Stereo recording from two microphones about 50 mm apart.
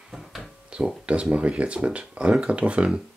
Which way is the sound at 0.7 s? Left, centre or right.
Centre.